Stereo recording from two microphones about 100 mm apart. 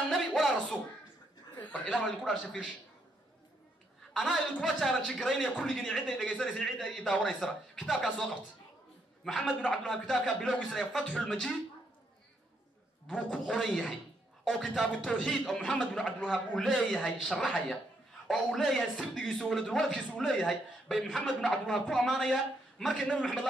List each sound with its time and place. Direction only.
0.1 s a sound: centre (ahead or behind)
1.9 s a man's voice: 5° left (ahead or behind)
4.1 s a woman's voice: centre (ahead or behind)
13.1 s a man's voice: 5° left (ahead or behind)